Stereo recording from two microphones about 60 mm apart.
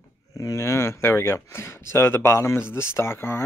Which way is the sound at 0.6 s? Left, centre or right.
Left.